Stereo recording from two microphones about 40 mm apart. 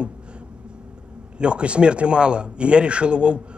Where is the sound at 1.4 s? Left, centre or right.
Right.